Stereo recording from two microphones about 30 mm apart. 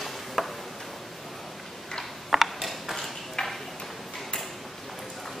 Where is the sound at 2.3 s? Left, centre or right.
Centre.